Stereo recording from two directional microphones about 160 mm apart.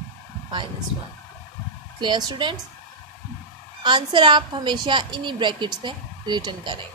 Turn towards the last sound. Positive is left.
turn(degrees=-30)  # may be behind; listen again after turning